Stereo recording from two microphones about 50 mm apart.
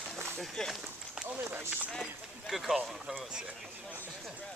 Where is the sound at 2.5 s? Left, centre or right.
Centre.